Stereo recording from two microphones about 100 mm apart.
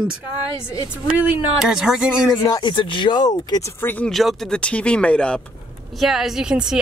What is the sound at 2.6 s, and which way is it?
Speech, 55° left (ahead or behind).